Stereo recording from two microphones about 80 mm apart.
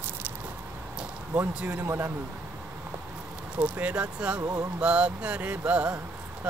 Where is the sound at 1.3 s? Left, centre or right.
Centre.